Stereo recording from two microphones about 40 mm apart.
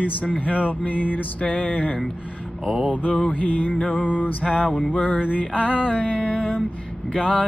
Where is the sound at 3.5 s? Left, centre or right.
Left.